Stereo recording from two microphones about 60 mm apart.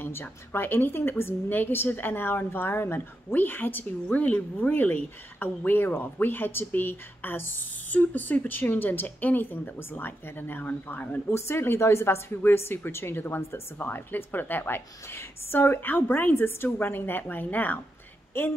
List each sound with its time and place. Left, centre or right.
0.0 s a woman's voice: left
11.3 s a woman's voice: left